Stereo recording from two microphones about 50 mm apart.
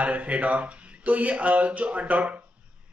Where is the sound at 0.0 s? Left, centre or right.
Right.